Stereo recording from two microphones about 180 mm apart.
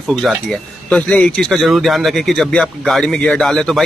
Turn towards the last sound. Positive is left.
turn(degrees=0)  # may be behind; listen again after turning